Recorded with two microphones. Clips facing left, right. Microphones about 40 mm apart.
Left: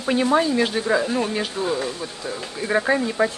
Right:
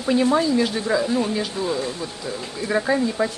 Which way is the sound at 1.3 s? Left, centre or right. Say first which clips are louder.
Even; left.